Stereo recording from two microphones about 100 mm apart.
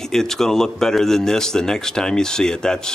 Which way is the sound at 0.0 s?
5° left (ahead or behind).